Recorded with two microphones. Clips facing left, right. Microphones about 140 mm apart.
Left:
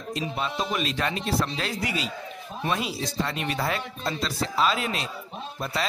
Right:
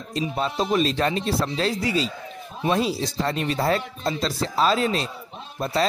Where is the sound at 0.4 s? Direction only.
35° right (ahead or behind).